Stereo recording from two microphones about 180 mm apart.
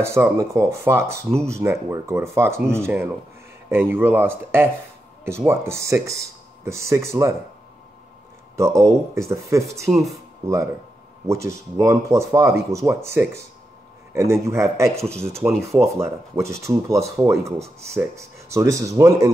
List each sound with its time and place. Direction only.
0.0 s speech: 15° right (ahead or behind)
8.5 s speech: 15° right (ahead or behind)